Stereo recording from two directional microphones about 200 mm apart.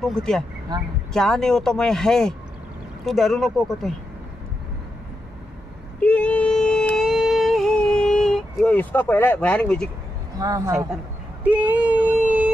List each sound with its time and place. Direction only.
0.0 s speech: 5° left (ahead or behind)
5.9 s music: 5° left (ahead or behind)
10.4 s speech: 15° right (ahead or behind)
11.4 s a sound: 10° right (ahead or behind)